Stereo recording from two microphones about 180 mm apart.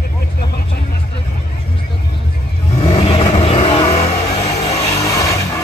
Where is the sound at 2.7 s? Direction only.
35° left (ahead or behind).